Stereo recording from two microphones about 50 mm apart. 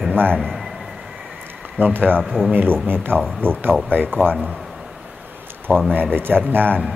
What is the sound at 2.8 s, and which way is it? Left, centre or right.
Speech, right.